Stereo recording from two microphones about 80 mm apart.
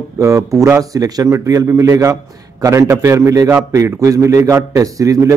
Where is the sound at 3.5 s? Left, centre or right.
Right.